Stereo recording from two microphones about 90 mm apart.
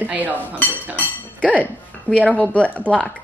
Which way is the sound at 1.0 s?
15° left (ahead or behind).